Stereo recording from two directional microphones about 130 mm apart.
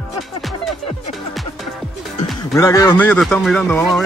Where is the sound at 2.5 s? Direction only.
25° left (ahead or behind).